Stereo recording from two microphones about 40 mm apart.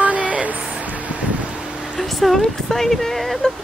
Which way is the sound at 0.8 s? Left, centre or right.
Right.